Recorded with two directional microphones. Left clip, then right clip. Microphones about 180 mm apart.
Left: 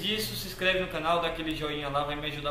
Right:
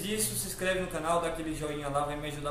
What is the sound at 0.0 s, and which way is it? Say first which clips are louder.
A man's voice: left 4 dB; 15° right (ahead or behind).